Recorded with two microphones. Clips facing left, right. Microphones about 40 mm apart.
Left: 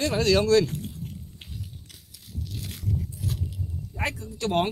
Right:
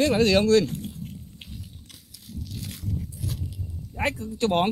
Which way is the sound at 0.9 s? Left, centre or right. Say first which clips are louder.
Right 1 dB; centre.